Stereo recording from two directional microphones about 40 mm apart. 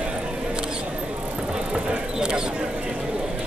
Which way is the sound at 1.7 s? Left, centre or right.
Right.